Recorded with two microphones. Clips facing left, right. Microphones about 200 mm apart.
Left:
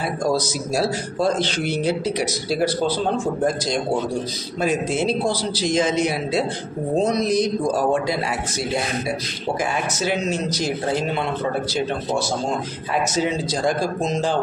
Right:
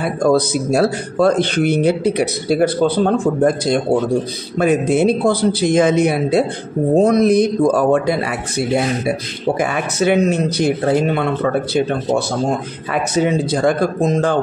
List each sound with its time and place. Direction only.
0.0 s speech: 55° right (ahead or behind)